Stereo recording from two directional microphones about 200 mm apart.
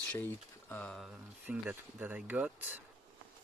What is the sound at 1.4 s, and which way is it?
Speech, 10° right (ahead or behind).